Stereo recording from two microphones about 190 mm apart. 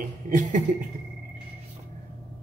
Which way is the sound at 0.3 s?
40° right (ahead or behind).